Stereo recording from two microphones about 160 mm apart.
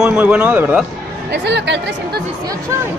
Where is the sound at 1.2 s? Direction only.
90° right.